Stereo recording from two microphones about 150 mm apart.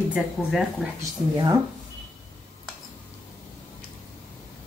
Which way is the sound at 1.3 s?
25° right (ahead or behind).